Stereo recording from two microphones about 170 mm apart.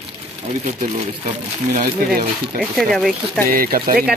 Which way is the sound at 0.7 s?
45° right (ahead or behind).